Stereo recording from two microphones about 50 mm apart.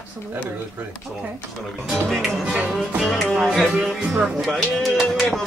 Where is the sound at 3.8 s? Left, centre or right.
Centre.